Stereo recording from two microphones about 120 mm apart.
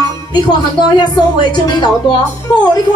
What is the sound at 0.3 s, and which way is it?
Speech, 35° left (ahead or behind).